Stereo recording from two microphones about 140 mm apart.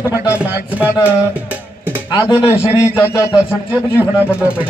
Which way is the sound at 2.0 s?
30° left (ahead or behind).